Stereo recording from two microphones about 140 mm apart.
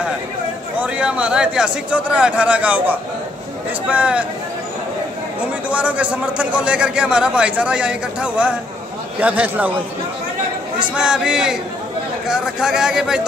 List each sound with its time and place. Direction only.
0.7 s a man's voice: 5° right (ahead or behind)
5.7 s a man's voice: 10° right (ahead or behind)
11.0 s speech: 5° right (ahead or behind)